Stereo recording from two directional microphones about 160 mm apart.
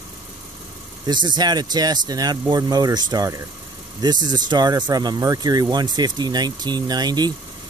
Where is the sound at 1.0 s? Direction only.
30° right (ahead or behind).